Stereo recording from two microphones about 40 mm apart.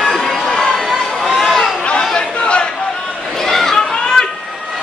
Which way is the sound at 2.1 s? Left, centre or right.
Left.